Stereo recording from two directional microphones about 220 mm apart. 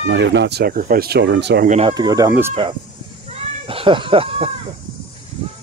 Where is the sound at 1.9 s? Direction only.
15° right (ahead or behind).